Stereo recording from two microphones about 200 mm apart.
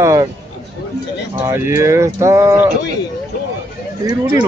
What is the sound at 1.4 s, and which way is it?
Speech, 15° right (ahead or behind).